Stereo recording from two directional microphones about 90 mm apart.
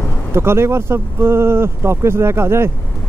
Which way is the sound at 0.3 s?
30° right (ahead or behind).